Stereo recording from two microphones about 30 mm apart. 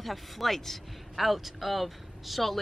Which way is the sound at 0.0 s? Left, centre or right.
Centre.